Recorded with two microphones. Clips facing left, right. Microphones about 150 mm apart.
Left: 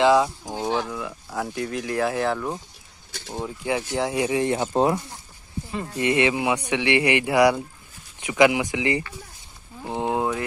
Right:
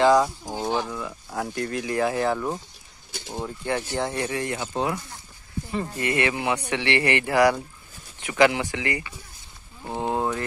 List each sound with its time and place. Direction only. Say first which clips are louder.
0.0 s speech: even; centre (ahead or behind)
4.6 s speech: left 6 dB; 30° left (ahead or behind)
5.9 s speech: left 5 dB; 20° left (ahead or behind)
9.8 s a sound: left 1 dB; 15° left (ahead or behind)